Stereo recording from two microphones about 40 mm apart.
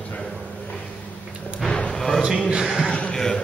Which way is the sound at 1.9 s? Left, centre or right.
Centre.